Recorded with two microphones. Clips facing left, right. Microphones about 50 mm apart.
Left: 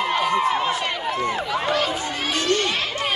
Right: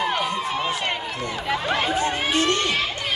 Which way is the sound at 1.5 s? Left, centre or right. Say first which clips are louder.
Right 4 dB; right.